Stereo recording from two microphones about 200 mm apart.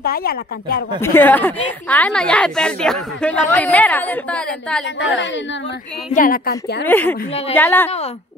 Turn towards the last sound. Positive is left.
turn(degrees=10)  # may be behind; listen again after turning